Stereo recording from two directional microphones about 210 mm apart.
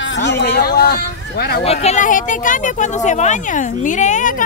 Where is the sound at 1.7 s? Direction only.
30° left (ahead or behind).